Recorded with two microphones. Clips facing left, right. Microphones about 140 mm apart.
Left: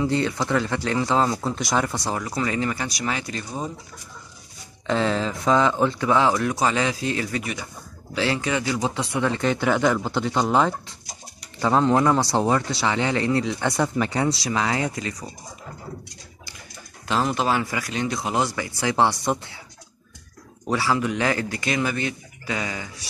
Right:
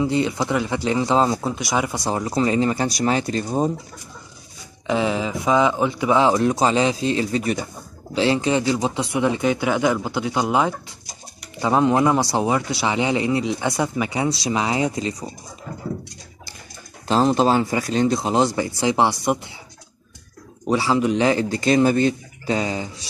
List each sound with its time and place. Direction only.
0.0 s a man's voice: 15° right (ahead or behind)
1.6 s a man's voice: 5° right (ahead or behind)
2.0 s speech: 25° right (ahead or behind)
4.8 s a man's voice: 10° right (ahead or behind)
17.1 s speech: 30° right (ahead or behind); by 19.5 s 15° right (ahead or behind)
20.6 s speech: 20° right (ahead or behind)